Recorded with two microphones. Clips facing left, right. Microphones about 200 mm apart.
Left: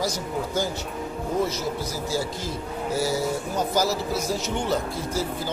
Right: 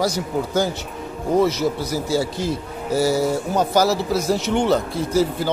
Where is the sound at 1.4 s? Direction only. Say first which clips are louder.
Right 8 dB; 75° right (ahead or behind).